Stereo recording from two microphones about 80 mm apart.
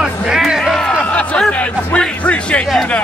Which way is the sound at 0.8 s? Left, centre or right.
Centre.